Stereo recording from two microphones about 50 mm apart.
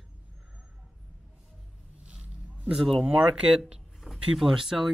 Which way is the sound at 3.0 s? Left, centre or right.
Right.